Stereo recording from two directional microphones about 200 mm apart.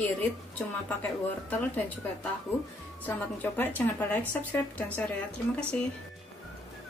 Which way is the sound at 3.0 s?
10° left (ahead or behind).